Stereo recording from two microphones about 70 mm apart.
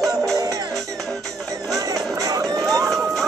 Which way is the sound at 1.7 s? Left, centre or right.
Right.